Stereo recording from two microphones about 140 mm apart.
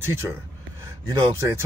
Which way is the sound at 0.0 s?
20° right (ahead or behind).